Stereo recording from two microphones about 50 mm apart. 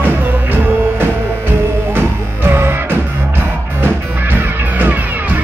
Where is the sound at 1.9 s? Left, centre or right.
Right.